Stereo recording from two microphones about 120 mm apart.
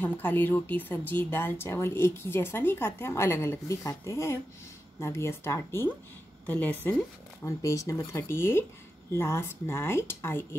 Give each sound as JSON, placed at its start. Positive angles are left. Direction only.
{"t": 0.0, "sound": "a woman's voice", "side_deg": 15}
{"t": 7.4, "sound": "speech", "side_deg": 25}